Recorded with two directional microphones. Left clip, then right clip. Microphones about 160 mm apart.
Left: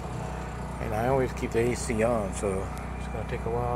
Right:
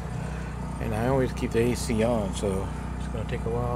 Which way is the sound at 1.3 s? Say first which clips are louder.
Right 1 dB; 15° right (ahead or behind).